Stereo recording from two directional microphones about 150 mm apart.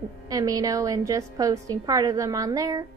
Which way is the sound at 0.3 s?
25° right (ahead or behind).